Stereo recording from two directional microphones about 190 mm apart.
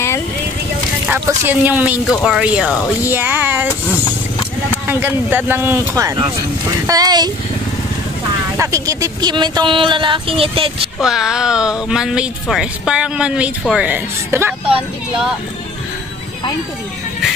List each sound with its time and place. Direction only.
1.0 s speech: 10° right (ahead or behind)
4.8 s speech: 10° right (ahead or behind)
8.5 s speech: 15° right (ahead or behind)
11.0 s speech: 5° right (ahead or behind)